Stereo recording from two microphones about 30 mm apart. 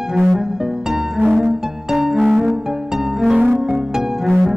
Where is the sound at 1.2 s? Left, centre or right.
Centre.